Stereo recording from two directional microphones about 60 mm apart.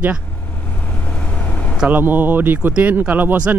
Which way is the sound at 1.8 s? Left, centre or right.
Right.